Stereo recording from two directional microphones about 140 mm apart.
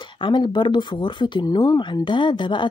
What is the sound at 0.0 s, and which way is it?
Speech, 35° left (ahead or behind).